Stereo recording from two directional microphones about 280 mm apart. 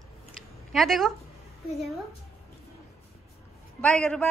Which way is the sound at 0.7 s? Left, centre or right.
Centre.